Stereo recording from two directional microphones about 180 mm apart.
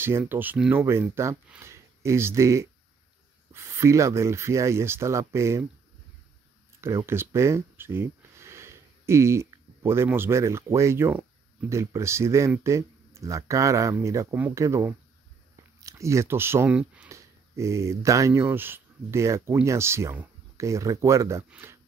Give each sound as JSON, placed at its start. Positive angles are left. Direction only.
{"t": 0.0, "sound": "speech", "side_deg": -10}
{"t": 6.8, "sound": "speech", "side_deg": -15}